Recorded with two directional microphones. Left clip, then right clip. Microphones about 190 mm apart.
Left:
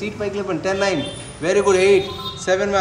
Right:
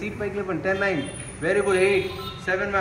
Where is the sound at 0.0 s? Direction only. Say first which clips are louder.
Left 4 dB; 15° left (ahead or behind).